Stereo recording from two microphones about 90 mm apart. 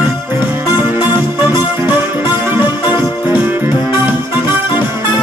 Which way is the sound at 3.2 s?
25° right (ahead or behind).